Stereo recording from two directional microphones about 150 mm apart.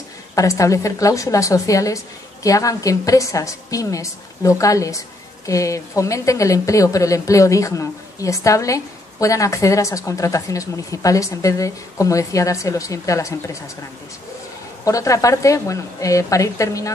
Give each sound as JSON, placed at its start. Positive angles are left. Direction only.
{"t": 0.4, "sound": "a woman's voice", "side_deg": 20}
{"t": 14.9, "sound": "a woman's voice", "side_deg": 20}